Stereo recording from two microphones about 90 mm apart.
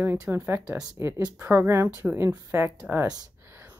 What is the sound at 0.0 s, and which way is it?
Speech, 25° right (ahead or behind).